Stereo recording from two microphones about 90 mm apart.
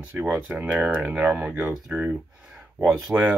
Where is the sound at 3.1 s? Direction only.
20° right (ahead or behind).